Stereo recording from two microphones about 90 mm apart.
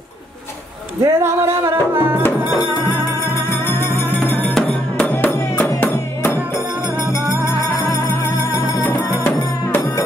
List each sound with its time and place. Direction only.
1.0 s music: 30° right (ahead or behind)
3.6 s music: 25° left (ahead or behind)
9.2 s music: 25° left (ahead or behind)